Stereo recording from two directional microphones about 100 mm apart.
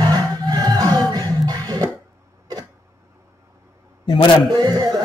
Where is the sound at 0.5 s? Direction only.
40° right (ahead or behind).